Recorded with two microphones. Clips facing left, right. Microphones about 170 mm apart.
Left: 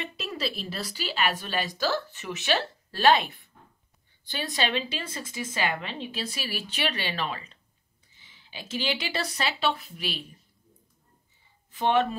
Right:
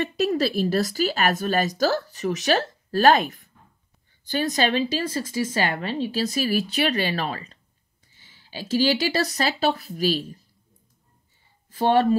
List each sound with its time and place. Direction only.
0.2 s a woman's voice: 45° right (ahead or behind)
11.7 s a woman's voice: 35° right (ahead or behind)